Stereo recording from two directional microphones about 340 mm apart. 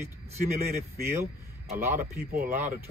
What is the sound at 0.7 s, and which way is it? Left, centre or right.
A man's voice, right.